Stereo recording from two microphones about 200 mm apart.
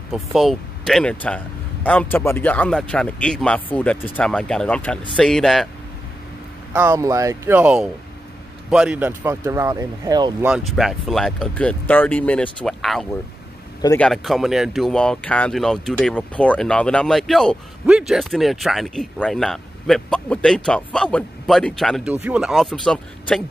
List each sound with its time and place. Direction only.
0.1 s speech: centre (ahead or behind)
6.7 s speech: 10° right (ahead or behind)
10.4 s speech: centre (ahead or behind)